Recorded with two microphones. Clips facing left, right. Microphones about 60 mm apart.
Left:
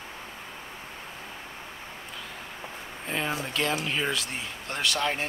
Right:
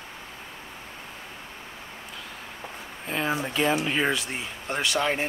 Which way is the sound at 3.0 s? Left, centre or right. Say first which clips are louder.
Right 3 dB; centre.